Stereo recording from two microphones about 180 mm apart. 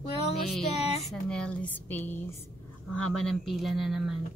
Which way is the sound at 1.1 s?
5° left (ahead or behind).